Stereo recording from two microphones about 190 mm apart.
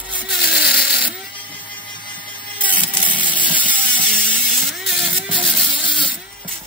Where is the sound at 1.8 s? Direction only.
25° left (ahead or behind).